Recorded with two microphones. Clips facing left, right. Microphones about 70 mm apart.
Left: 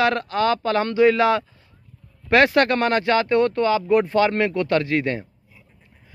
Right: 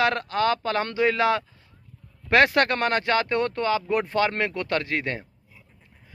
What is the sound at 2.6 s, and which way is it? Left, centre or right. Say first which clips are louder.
Speech: left 4 dB; right.